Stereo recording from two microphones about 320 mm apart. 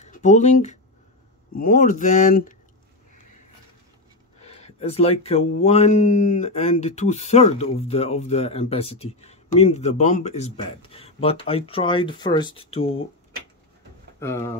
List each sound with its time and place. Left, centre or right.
0.0 s speech: left
4.4 s speech: centre
14.2 s speech: centre